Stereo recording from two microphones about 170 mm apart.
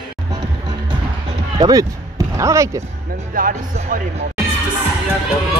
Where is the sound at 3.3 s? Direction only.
55° right (ahead or behind).